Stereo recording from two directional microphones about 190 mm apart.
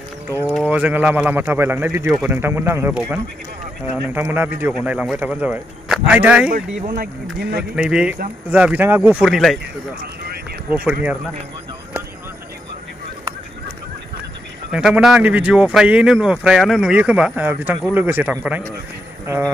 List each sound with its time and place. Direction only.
0.6 s a man's voice: 5° right (ahead or behind)
4.2 s a man's voice: 10° right (ahead or behind)
7.0 s speech: 55° right (ahead or behind)
7.7 s speech: 5° right (ahead or behind)
10.7 s a man's voice: 10° right (ahead or behind)
14.7 s a man's voice: 5° right (ahead or behind)